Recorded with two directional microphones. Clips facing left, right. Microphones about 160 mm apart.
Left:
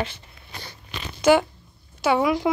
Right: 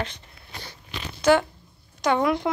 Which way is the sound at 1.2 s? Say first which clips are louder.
Left 2 dB; 10° left (ahead or behind).